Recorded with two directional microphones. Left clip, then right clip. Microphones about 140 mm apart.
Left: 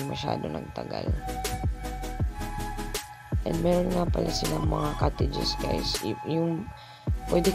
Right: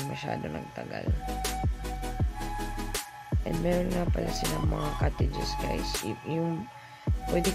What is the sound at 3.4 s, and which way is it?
Music, 20° left (ahead or behind).